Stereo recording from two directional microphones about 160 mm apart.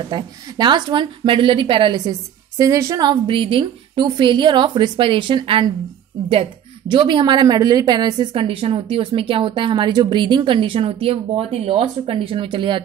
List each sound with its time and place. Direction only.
0.1 s a woman's voice: 25° right (ahead or behind)
6.9 s a woman's voice: 30° right (ahead or behind)